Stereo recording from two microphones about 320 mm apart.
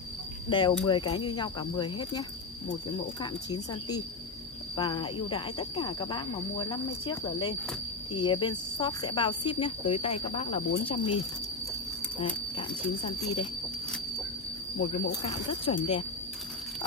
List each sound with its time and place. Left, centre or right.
0.5 s speech: centre
12.2 s speech: centre
14.8 s speech: left